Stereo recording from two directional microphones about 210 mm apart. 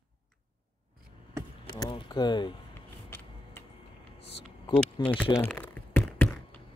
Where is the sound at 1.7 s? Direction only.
20° left (ahead or behind).